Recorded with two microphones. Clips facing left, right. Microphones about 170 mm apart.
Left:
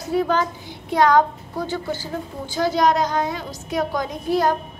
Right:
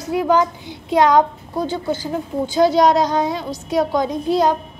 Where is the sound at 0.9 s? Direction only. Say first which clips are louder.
Right 2 dB; 20° right (ahead or behind).